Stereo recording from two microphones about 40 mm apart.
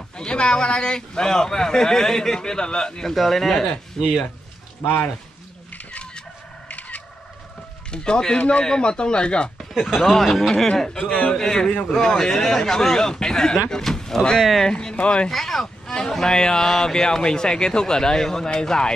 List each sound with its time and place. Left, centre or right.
0.2 s speech: left
3.2 s speech: centre
6.7 s fowl: left
7.9 s speech: left
8.4 s a man's voice: left
8.6 s speech: left
9.8 s speech: centre
10.1 s speech: centre; by 15.2 s left
15.2 s speech: centre